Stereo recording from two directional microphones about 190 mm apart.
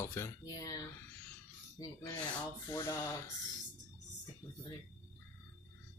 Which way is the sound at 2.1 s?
5° left (ahead or behind).